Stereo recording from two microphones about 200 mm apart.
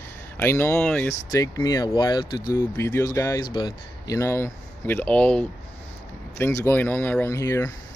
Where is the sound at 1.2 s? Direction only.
20° left (ahead or behind).